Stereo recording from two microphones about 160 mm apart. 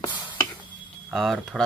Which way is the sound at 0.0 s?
30° left (ahead or behind).